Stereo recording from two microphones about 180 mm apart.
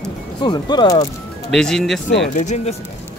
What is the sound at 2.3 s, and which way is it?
Speech, 40° left (ahead or behind).